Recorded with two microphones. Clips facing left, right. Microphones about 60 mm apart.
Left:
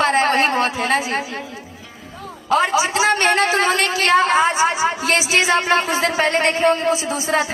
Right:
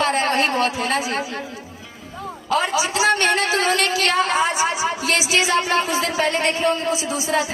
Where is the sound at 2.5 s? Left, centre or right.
Left.